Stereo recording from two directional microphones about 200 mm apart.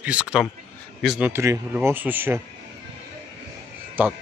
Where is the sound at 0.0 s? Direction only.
5° right (ahead or behind).